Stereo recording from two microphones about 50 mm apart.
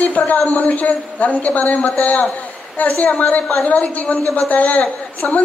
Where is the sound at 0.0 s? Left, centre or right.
Left.